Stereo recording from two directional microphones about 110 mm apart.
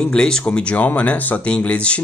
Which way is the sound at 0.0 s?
5° left (ahead or behind).